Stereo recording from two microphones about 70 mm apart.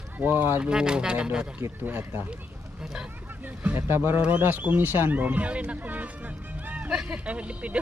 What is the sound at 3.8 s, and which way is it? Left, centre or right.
A man's voice, right.